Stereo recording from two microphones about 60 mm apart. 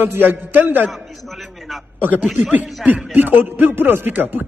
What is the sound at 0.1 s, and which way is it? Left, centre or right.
Speech, right.